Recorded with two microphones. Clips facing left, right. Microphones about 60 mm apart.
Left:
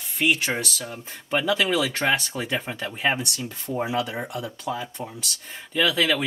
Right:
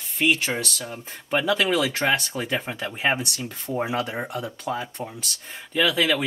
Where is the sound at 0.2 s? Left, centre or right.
Centre.